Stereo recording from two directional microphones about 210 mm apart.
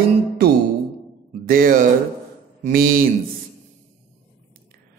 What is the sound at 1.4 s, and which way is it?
Speech, 45° right (ahead or behind).